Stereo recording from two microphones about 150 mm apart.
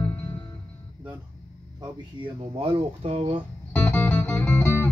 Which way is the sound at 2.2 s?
40° right (ahead or behind).